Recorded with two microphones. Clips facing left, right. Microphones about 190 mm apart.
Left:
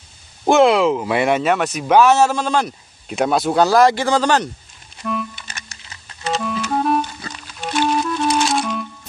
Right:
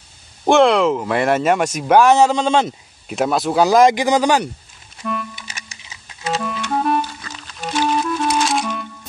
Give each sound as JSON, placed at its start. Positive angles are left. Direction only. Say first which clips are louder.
{"t": 0.5, "sound": "speech", "louder": "even", "side_deg": 0}
{"t": 1.8, "sound": "speech", "louder": "right 1 dB", "side_deg": -10}
{"t": 3.1, "sound": "speech", "louder": "left 1 dB", "side_deg": 0}
{"t": 3.6, "sound": "speech", "louder": "right 3 dB", "side_deg": -15}
{"t": 5.5, "sound": "music", "louder": "even", "side_deg": -10}